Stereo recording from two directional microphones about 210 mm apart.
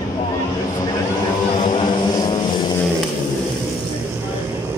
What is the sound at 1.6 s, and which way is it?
Vehicle, 20° left (ahead or behind).